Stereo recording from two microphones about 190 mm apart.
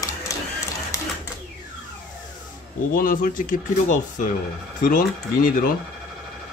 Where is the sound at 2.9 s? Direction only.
50° left (ahead or behind).